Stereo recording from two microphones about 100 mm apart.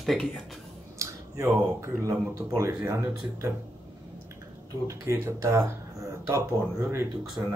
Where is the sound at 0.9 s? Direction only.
30° right (ahead or behind).